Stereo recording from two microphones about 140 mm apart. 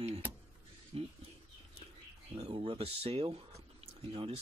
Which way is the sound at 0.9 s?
40° right (ahead or behind).